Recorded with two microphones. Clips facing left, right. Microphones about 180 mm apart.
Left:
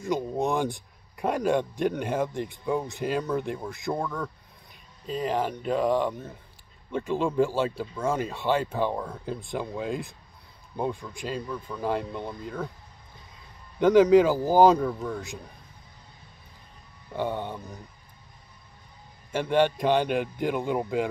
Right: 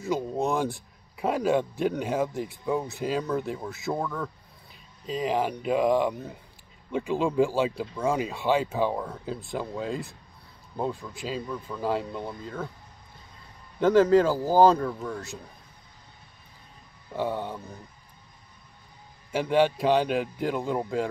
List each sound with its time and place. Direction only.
0.0 s a sound: centre (ahead or behind)
0.5 s speech: centre (ahead or behind)
13.7 s speech: centre (ahead or behind)
14.5 s speech: 20° left (ahead or behind)
14.8 s speech: centre (ahead or behind)
17.1 s speech: 5° right (ahead or behind)
19.3 s speech: 5° right (ahead or behind)